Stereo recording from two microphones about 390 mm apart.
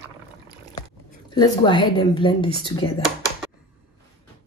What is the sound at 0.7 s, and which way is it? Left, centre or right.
Speech, centre.